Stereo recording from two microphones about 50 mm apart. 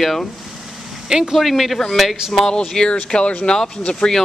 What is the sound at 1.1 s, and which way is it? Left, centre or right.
Speech, centre.